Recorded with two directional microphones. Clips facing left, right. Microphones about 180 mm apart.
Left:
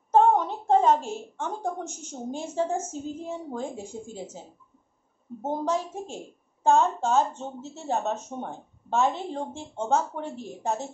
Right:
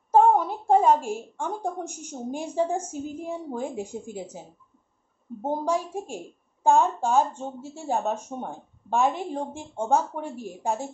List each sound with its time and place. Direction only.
0.1 s a woman's voice: 10° right (ahead or behind)